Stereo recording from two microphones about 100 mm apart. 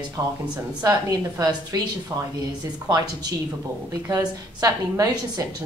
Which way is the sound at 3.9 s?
40° right (ahead or behind).